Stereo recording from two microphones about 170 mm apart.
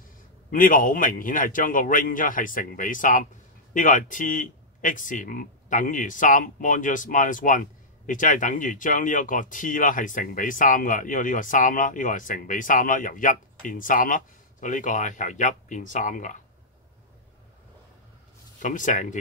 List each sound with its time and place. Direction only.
0.5 s speech: 50° left (ahead or behind)
18.6 s speech: 50° left (ahead or behind)